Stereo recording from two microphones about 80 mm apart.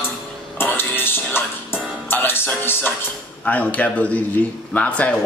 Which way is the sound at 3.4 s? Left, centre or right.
Centre.